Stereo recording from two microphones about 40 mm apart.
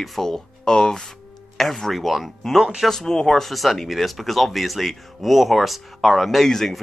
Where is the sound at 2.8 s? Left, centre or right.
Centre.